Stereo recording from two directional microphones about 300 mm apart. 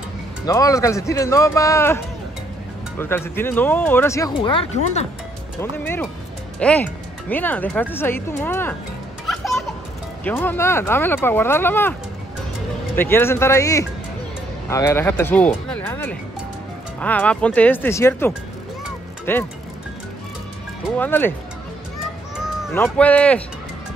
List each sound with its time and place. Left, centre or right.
0.5 s speech: centre
3.0 s speech: centre
5.6 s speech: centre
9.3 s children playing: centre
10.2 s speech: centre
12.9 s speech: centre
21.0 s speech: centre
22.4 s speech: centre